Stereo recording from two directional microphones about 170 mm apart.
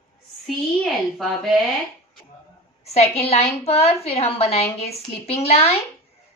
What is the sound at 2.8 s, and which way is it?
A woman's voice, 40° left (ahead or behind).